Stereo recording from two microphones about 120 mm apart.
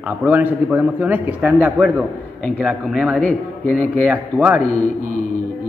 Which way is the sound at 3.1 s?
15° left (ahead or behind).